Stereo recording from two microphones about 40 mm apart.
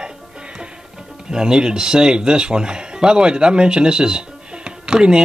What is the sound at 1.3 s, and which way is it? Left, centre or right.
Speech, centre.